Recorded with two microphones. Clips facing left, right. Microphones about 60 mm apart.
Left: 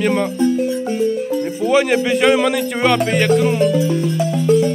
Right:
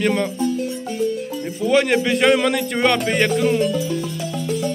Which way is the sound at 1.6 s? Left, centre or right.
Centre.